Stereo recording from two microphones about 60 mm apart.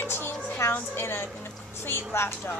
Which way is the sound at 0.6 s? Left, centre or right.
Left.